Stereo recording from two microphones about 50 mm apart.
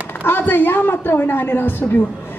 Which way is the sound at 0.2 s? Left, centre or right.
Left.